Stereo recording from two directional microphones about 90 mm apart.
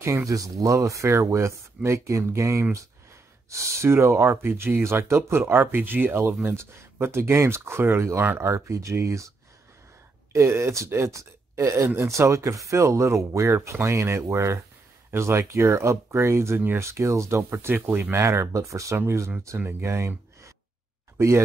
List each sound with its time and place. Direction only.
0.0 s speech: 35° right (ahead or behind)
10.3 s speech: 30° right (ahead or behind)